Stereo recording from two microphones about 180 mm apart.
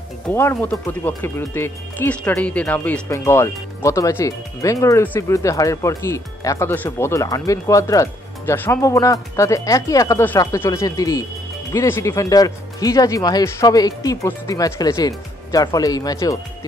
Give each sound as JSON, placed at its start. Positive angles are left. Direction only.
{"t": 0.3, "sound": "speech", "side_deg": 15}